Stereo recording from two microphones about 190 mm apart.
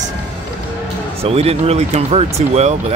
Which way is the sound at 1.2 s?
30° right (ahead or behind).